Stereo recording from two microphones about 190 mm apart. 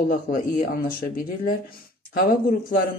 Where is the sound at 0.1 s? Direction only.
50° left (ahead or behind).